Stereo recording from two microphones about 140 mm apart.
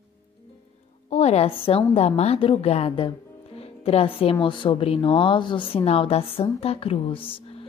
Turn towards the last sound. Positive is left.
turn(degrees=40)  # may be behind; listen again after turning